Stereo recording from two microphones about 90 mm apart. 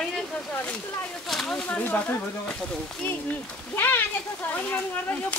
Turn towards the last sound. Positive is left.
turn(degrees=25)  # may be behind; listen again after turning